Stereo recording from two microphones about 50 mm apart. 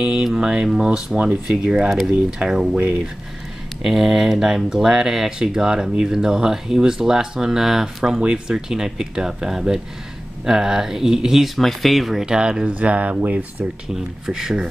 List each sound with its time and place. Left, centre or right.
0.0 s speech: centre
1.1 s speech: right
1.5 s speech: centre
3.8 s speech: centre
12.3 s speech: centre
14.2 s speech: centre